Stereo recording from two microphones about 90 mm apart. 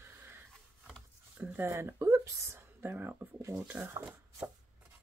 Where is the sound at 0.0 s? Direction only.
25° right (ahead or behind).